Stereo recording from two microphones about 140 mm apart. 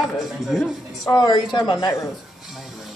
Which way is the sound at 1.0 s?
25° left (ahead or behind).